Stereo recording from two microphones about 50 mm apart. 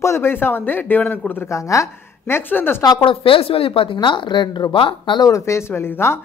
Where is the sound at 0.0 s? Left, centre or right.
Left.